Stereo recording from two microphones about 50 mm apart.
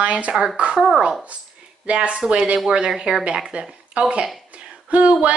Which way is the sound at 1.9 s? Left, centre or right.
Right.